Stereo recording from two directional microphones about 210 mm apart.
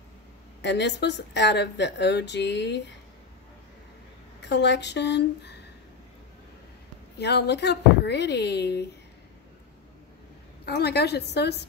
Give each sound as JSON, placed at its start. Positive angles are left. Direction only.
{"t": 0.6, "sound": "a woman's voice", "side_deg": 55}
{"t": 4.4, "sound": "a woman's voice", "side_deg": 55}
{"t": 7.2, "sound": "speech", "side_deg": 50}
{"t": 10.6, "sound": "speech", "side_deg": 50}